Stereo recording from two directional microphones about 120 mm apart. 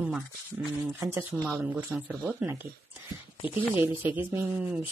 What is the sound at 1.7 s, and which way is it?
Speech, 15° right (ahead or behind).